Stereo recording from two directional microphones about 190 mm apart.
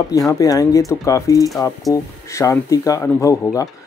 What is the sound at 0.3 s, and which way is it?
Speech, 15° left (ahead or behind).